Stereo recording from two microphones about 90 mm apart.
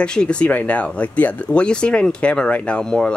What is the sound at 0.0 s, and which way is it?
Speech, 10° left (ahead or behind).